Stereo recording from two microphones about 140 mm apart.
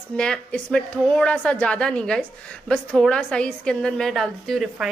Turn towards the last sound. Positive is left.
turn(degrees=0)  # may be behind; listen again after turning